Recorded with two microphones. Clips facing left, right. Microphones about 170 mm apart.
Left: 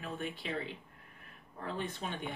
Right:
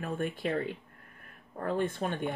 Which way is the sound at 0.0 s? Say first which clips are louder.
Right 7 dB; 55° right (ahead or behind).